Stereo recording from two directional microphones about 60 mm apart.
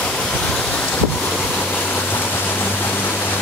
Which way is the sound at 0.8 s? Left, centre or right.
Left.